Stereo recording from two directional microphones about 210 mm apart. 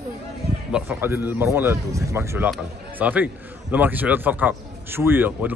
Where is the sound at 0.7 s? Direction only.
10° right (ahead or behind).